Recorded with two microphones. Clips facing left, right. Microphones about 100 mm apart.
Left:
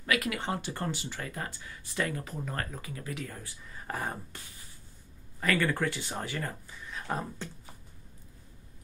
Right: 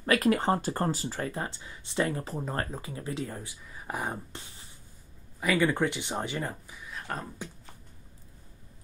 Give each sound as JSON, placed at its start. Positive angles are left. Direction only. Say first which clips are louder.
{"t": 0.0, "sound": "speech", "louder": "right 6 dB", "side_deg": -40}
{"t": 3.6, "sound": "speech", "louder": "right 1 dB", "side_deg": -10}
{"t": 5.4, "sound": "speech", "louder": "right 3 dB", "side_deg": -15}
{"t": 7.1, "sound": "speech", "louder": "left 3 dB", "side_deg": 5}